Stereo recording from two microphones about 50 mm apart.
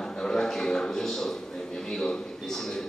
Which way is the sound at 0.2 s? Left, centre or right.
Centre.